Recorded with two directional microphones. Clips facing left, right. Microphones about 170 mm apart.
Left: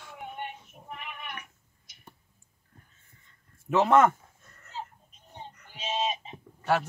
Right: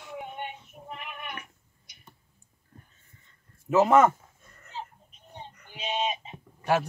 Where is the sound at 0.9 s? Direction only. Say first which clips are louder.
Right 1 dB; centre (ahead or behind).